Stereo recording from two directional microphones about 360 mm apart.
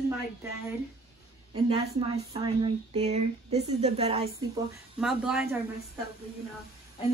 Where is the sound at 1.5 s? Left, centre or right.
Centre.